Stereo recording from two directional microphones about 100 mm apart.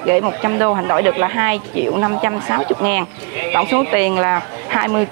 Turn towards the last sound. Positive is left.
turn(degrees=-30)  # may be behind; listen again after turning